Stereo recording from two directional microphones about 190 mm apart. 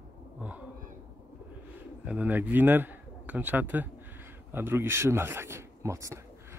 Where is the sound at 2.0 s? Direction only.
5° right (ahead or behind).